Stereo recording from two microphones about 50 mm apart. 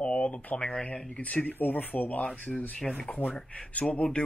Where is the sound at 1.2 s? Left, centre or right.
Left.